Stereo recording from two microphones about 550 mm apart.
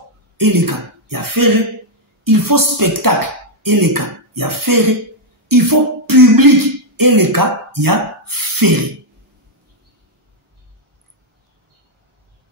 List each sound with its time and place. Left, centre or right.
0.4 s speech: right